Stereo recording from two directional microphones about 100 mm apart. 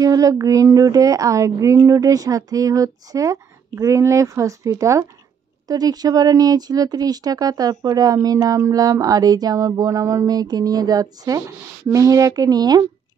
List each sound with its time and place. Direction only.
0.0 s speech: 40° right (ahead or behind)